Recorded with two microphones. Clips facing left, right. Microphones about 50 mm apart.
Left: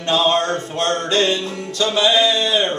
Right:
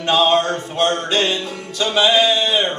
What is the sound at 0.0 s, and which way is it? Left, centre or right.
Music, right.